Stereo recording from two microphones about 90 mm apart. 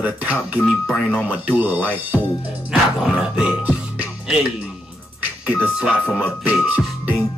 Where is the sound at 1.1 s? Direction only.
20° right (ahead or behind).